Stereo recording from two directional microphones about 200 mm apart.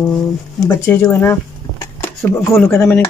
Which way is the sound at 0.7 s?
10° left (ahead or behind).